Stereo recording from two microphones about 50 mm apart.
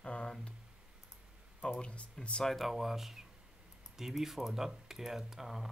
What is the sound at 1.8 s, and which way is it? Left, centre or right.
Speech, left.